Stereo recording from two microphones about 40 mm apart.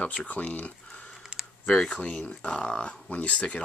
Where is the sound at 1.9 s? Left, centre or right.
Left.